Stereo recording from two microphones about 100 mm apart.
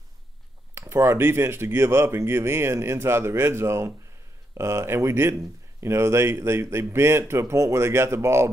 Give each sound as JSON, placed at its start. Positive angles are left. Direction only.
{"t": 0.7, "sound": "speech", "side_deg": -30}